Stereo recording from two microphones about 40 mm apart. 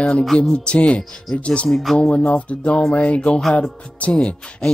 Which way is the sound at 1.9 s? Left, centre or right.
Left.